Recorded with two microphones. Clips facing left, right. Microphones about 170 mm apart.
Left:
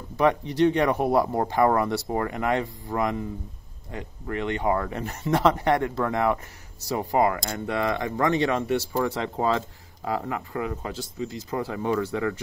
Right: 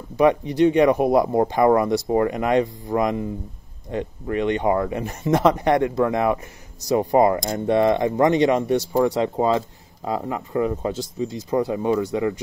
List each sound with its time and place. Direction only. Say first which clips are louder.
0.2 s speech: right 4 dB; 15° right (ahead or behind)